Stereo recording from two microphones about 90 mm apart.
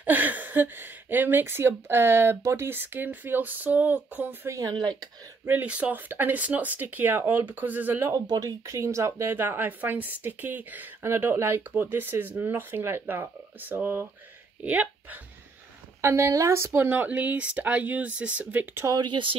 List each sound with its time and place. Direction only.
0.0 s speech: 20° right (ahead or behind)
4.5 s speech: 40° right (ahead or behind)
4.7 s speech: 55° right (ahead or behind)
5.4 s speech: 20° right (ahead or behind)
8.1 s speech: 45° right (ahead or behind); by 15.1 s 15° right (ahead or behind)
16.0 s speech: 30° right (ahead or behind)
18.9 s speech: 60° right (ahead or behind)